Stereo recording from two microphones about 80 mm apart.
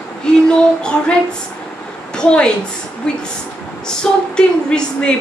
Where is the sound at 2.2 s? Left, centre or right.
Centre.